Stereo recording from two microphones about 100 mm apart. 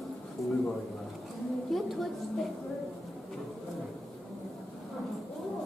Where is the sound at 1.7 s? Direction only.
Centre (ahead or behind).